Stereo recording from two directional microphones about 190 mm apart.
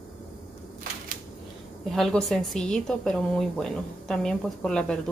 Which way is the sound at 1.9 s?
Centre (ahead or behind).